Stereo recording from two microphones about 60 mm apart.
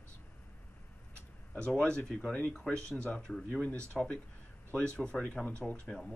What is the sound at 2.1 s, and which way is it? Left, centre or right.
Speech, centre.